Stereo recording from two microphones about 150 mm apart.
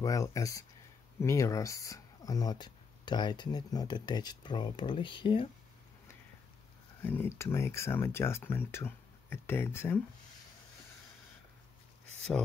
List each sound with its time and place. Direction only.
0.0 s speech: 20° left (ahead or behind)
7.0 s speech: 15° left (ahead or behind)